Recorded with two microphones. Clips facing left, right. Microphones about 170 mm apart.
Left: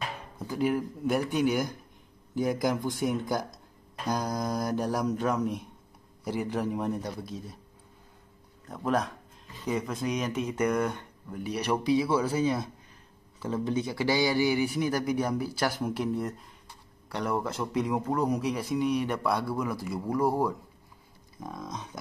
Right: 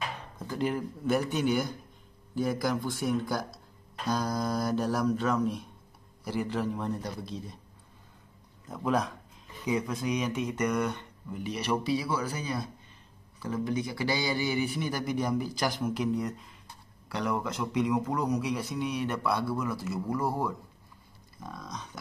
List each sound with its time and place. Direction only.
0.5 s speech: 5° left (ahead or behind)
8.6 s speech: centre (ahead or behind); by 12.6 s 25° left (ahead or behind)
13.7 s speech: 20° left (ahead or behind); by 16.3 s 5° left (ahead or behind)
17.6 s speech: 20° left (ahead or behind)
17.9 s speech: 5° left (ahead or behind)
21.4 s speech: 20° left (ahead or behind)